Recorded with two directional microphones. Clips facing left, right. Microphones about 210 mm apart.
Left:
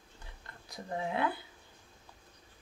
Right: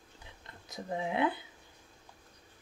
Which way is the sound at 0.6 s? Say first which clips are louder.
Right 1 dB; 20° right (ahead or behind).